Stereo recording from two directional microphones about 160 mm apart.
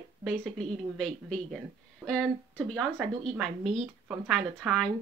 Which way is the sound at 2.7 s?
Centre (ahead or behind).